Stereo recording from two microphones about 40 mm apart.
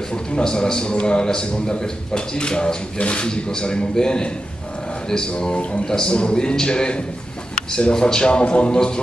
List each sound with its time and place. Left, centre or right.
0.4 s a man's voice: centre
5.6 s speech: left
5.9 s a man's voice: left